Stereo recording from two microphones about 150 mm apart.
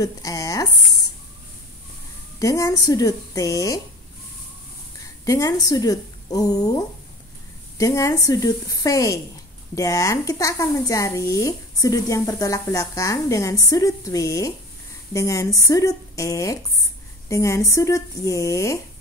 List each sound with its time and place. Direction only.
0.0 s a sound: 25° left (ahead or behind)
2.3 s speech: 20° left (ahead or behind)
5.2 s speech: 20° left (ahead or behind)